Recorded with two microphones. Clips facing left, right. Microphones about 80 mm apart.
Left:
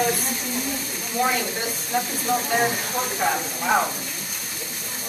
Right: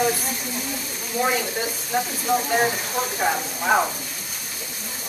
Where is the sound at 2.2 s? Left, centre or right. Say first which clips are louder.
Right 2 dB; centre.